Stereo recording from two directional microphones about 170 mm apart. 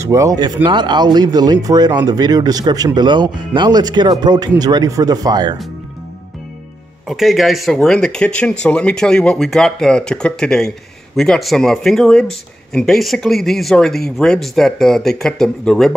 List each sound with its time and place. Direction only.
0.0 s speech: 20° right (ahead or behind)
7.1 s speech: centre (ahead or behind)